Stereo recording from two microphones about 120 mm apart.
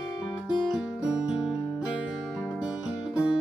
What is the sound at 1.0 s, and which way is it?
Music, 35° left (ahead or behind).